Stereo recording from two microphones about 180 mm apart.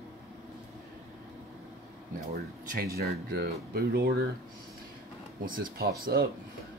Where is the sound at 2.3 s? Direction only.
55° right (ahead or behind).